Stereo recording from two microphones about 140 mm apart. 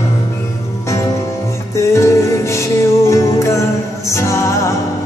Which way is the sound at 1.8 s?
20° left (ahead or behind).